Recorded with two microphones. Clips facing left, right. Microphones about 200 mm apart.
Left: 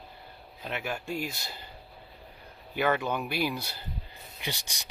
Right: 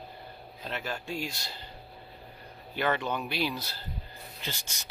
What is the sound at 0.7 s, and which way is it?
Speech, 10° left (ahead or behind).